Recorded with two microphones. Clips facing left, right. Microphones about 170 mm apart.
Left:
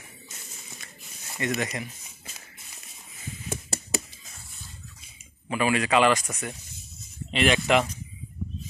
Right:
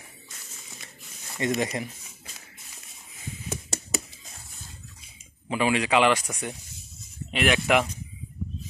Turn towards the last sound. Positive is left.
turn(degrees=-10)  # may be behind; listen again after turning